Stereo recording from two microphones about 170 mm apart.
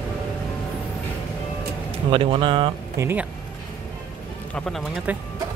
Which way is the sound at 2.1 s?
30° right (ahead or behind).